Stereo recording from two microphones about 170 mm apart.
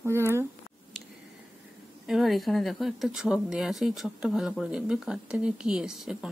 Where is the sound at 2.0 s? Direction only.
Centre (ahead or behind).